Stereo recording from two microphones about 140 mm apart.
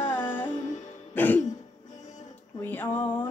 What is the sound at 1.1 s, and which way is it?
Throat clearing, 15° left (ahead or behind).